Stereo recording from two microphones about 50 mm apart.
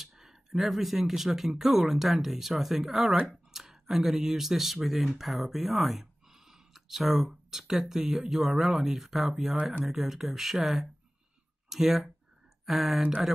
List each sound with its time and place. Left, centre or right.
0.0 s speech: centre